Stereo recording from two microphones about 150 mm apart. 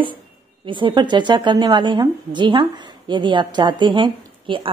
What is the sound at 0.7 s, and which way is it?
A woman's voice, 30° right (ahead or behind).